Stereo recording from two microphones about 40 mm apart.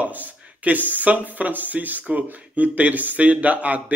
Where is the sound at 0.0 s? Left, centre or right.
Right.